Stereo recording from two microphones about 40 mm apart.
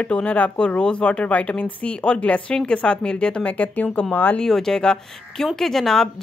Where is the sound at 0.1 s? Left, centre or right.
Left.